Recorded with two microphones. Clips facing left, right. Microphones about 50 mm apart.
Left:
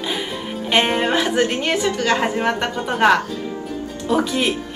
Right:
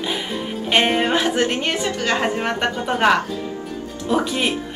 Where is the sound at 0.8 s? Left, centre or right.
Centre.